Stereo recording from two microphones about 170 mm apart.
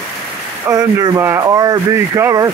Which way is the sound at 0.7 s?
20° right (ahead or behind).